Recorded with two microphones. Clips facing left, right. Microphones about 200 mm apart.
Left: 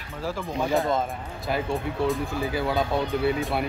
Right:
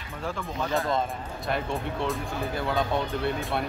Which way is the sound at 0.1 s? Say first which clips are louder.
Left 3 dB; centre (ahead or behind).